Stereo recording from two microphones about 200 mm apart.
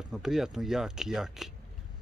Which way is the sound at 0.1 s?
Centre (ahead or behind).